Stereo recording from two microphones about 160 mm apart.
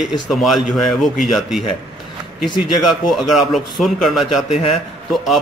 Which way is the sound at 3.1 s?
Centre (ahead or behind).